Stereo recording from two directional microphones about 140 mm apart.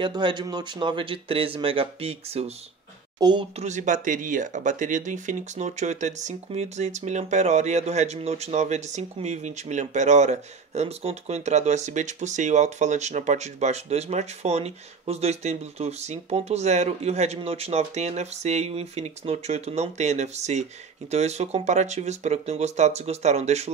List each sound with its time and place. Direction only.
0.0 s speech: 35° right (ahead or behind)
3.2 s speech: 30° right (ahead or behind)
3.5 s speech: 60° right (ahead or behind)